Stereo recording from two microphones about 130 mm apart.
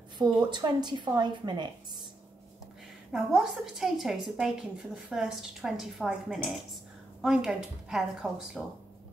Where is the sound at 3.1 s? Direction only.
5° right (ahead or behind).